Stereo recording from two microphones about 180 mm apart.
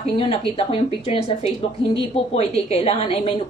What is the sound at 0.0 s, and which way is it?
Speech, 35° left (ahead or behind).